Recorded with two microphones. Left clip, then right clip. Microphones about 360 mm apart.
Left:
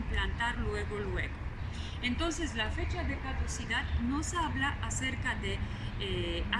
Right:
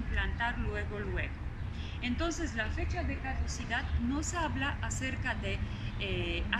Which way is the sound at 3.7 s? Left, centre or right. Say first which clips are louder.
Left 1 dB; centre.